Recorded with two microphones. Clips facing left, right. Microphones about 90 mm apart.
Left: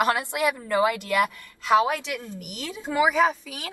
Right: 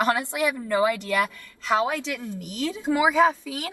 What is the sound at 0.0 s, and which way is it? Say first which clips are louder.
A woman's voice: even; 20° left (ahead or behind).